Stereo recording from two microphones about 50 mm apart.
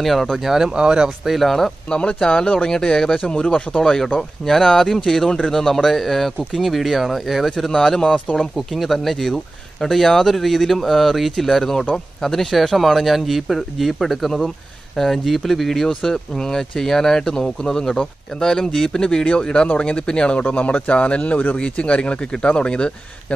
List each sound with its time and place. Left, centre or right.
0.0 s speech: centre
0.5 s speech: centre
1.2 s speech: centre
1.9 s a man's voice: centre
3.8 s speech: centre
7.5 s speech: centre
8.5 s a man's voice: centre